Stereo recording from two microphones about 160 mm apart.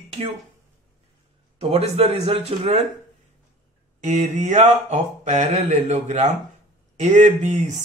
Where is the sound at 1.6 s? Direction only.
40° right (ahead or behind).